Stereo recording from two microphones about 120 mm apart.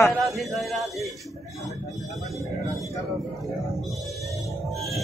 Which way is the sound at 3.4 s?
Centre (ahead or behind).